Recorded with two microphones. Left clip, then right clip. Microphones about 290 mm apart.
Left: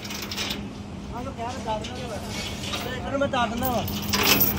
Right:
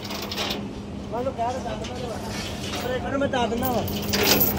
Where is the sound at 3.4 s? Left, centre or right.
Left.